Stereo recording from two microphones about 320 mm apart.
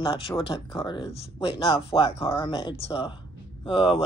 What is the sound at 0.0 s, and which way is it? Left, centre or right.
Speech, centre.